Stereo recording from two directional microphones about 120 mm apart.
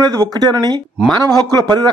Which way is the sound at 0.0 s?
35° right (ahead or behind).